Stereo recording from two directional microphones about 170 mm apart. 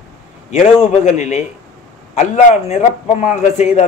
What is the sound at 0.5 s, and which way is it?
A man's voice, 45° left (ahead or behind).